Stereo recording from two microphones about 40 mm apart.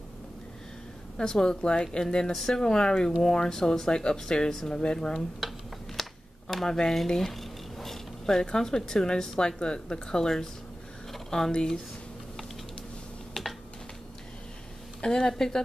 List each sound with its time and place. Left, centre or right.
1.1 s speech: centre
5.4 s a sound: centre
6.5 s speech: centre
13.3 s computer keyboard: centre
15.0 s speech: centre